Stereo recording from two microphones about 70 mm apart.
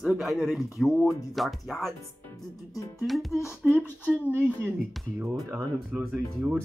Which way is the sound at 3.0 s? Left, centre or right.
Centre.